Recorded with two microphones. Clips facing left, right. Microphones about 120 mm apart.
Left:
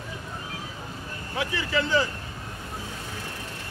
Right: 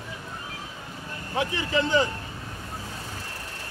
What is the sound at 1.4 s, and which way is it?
Speech, 25° right (ahead or behind).